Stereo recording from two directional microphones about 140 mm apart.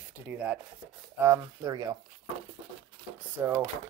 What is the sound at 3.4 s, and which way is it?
Speech, 20° right (ahead or behind).